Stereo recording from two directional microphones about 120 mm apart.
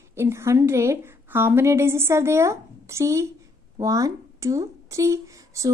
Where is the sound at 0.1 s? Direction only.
20° right (ahead or behind).